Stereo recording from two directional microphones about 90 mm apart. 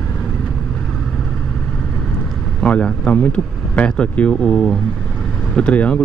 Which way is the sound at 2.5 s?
10° left (ahead or behind).